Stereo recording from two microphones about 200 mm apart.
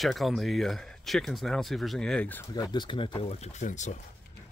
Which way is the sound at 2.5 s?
20° left (ahead or behind).